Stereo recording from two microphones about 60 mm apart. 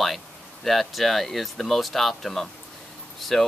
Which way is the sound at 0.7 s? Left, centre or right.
Centre.